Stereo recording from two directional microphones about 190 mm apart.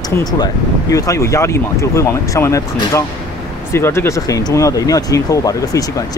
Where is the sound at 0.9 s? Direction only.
15° left (ahead or behind).